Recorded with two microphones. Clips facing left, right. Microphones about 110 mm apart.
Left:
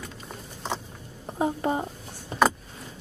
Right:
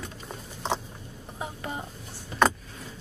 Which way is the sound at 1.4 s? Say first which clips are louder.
Left 10 dB; 35° left (ahead or behind).